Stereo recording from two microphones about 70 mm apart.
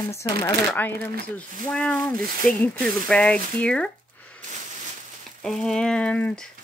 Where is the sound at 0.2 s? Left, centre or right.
Left.